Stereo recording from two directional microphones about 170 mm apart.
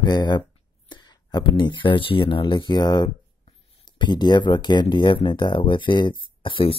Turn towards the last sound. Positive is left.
turn(degrees=30)  # may be behind; listen again after turning